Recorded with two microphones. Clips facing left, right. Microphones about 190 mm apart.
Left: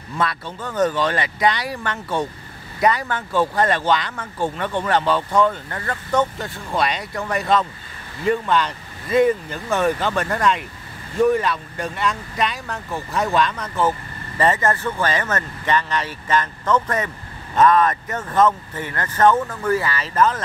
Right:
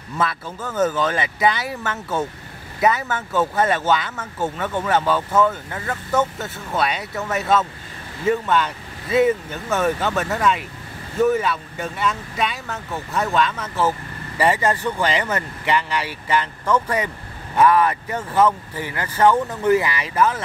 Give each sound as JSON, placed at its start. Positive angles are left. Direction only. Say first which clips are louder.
{"t": 0.2, "sound": "speech", "louder": "even", "side_deg": -5}